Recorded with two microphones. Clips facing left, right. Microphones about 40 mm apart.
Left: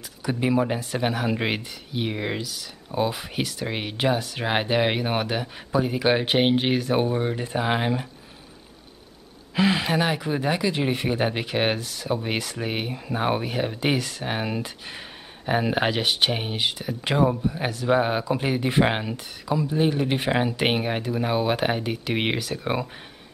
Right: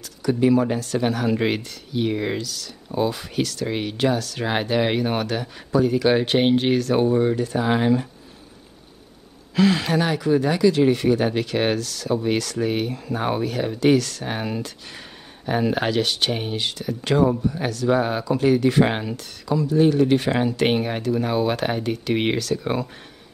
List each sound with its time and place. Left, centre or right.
0.2 s speech: centre
9.6 s speech: centre